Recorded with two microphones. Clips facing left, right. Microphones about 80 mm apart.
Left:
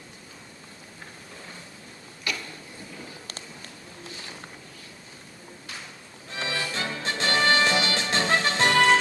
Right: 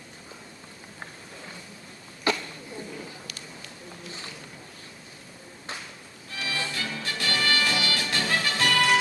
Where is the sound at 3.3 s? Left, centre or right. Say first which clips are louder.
Left 1 dB; left.